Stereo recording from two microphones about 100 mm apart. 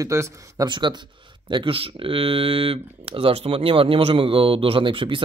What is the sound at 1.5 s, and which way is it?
Speech, 65° right (ahead or behind).